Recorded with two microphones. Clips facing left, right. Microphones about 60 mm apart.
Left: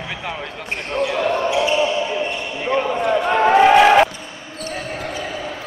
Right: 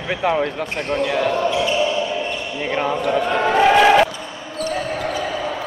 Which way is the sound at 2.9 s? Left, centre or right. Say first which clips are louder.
Left 1 dB; left.